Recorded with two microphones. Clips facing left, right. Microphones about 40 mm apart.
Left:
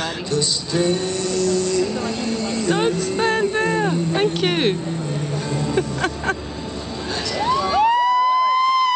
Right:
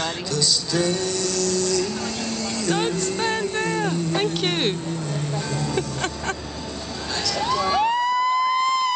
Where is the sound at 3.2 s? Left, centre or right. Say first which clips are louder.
Left 7 dB; centre.